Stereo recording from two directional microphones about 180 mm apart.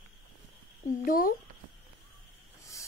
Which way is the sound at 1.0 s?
55° left (ahead or behind).